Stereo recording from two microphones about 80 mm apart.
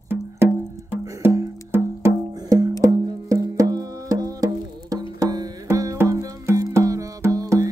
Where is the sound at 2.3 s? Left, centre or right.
Right.